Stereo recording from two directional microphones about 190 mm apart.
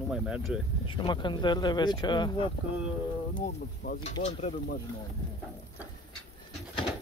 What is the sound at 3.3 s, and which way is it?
Speech, 50° left (ahead or behind).